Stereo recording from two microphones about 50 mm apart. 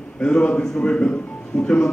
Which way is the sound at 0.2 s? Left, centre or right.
Left.